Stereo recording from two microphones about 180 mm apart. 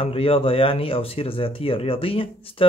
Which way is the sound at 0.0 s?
30° left (ahead or behind).